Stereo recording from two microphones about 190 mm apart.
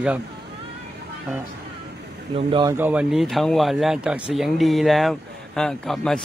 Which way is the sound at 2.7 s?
10° right (ahead or behind).